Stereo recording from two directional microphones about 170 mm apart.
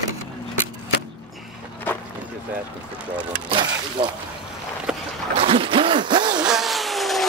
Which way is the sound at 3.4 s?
30° right (ahead or behind).